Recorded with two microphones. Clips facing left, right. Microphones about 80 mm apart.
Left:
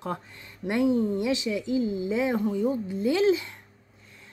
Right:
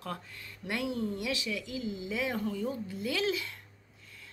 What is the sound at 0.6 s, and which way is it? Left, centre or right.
Speech, left.